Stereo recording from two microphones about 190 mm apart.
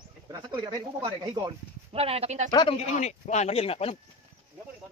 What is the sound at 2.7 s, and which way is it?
Speech, 35° left (ahead or behind).